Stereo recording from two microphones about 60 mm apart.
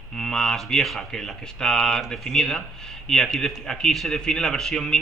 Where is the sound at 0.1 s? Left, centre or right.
Centre.